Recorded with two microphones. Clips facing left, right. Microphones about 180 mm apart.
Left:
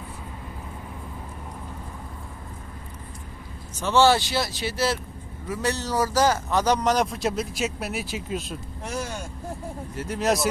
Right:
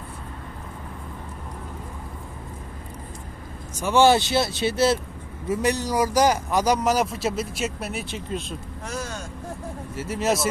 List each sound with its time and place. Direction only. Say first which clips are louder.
3.8 s a man's voice: right 2 dB; 15° right (ahead or behind); by 8.5 s 5° left (ahead or behind)
8.8 s vehicle: left 1 dB; 15° left (ahead or behind)
9.9 s speech: even; 5° right (ahead or behind)